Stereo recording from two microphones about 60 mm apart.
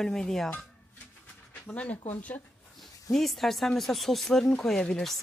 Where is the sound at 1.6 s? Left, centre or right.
Left.